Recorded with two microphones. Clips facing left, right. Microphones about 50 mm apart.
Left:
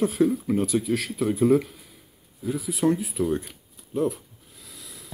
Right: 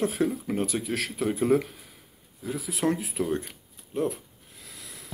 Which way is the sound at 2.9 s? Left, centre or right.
Right.